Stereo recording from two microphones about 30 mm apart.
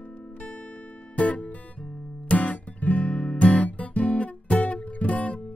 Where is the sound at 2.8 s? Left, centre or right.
Left.